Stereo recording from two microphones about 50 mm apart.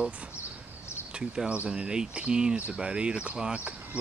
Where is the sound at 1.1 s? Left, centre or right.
Centre.